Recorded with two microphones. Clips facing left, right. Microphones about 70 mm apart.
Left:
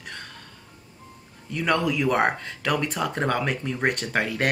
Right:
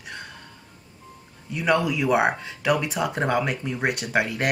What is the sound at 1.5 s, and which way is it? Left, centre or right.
Speech, centre.